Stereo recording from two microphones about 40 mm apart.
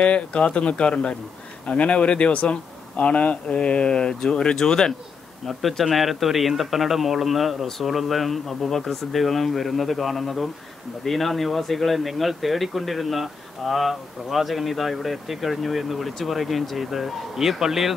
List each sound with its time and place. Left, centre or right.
0.0 s speech: left
5.5 s a man's voice: centre